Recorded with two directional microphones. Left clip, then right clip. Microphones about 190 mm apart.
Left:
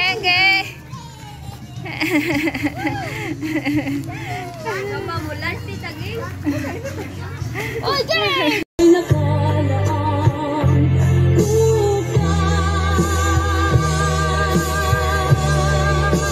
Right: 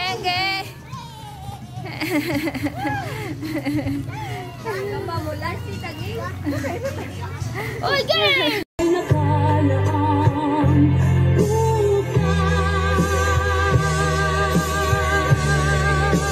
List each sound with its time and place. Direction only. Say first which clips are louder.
0.0 s child singing: left 7 dB; centre (ahead or behind)
2.0 s speech: left 4 dB; centre (ahead or behind)
7.5 s speech: left 1 dB; centre (ahead or behind)
8.8 s music: left 6 dB; 30° left (ahead or behind)